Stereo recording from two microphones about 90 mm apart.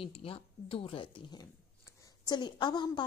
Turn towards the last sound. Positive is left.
turn(degrees=55)  # may be behind; listen again after turning